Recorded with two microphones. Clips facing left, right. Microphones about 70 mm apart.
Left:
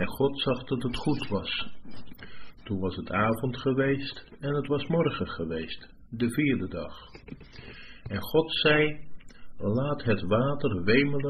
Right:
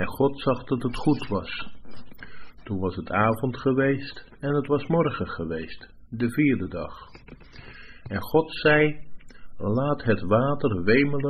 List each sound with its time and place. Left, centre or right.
0.0 s speech: right
2.7 s speech: right